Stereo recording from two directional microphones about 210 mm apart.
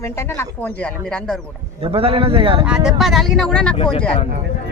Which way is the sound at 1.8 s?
25° right (ahead or behind).